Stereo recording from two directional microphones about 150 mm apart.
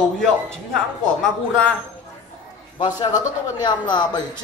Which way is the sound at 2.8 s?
30° left (ahead or behind).